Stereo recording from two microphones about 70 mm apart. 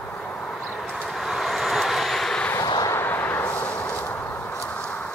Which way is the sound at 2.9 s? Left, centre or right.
Left.